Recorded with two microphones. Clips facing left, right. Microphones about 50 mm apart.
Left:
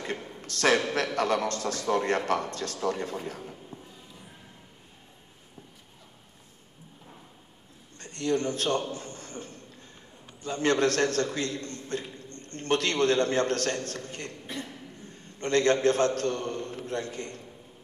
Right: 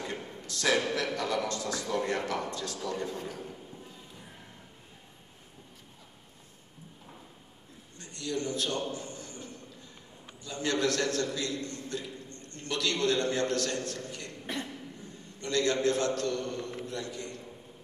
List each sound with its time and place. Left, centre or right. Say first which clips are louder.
0.4 s a man's voice: left 4 dB; left
8.0 s a man's voice: left 6 dB; left
8.9 s a sound: left 2 dB; left
10.4 s a man's voice: left 5 dB; left
14.4 s a sound: right 5 dB; right
15.4 s a man's voice: left 5 dB; left